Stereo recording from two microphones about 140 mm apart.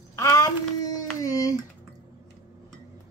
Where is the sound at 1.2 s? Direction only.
25° left (ahead or behind).